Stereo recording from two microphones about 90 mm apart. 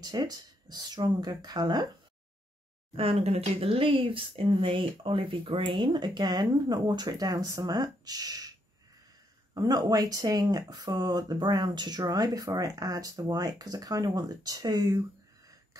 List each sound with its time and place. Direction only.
0.0 s speech: 45° right (ahead or behind)
3.0 s speech: 90° right; by 8.5 s 45° right (ahead or behind)
9.5 s speech: 50° right (ahead or behind)
12.0 s speech: 40° right (ahead or behind)